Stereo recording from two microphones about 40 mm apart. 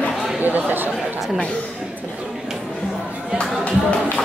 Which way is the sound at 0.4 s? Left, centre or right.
Right.